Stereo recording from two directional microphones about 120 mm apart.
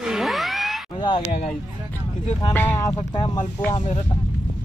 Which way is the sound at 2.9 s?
40° left (ahead or behind).